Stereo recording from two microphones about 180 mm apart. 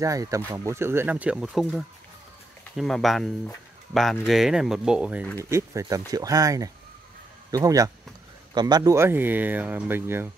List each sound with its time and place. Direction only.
0.0 s speech: 20° right (ahead or behind); by 1.8 s centre (ahead or behind)
2.8 s speech: centre (ahead or behind)
5.4 s speech: 15° right (ahead or behind)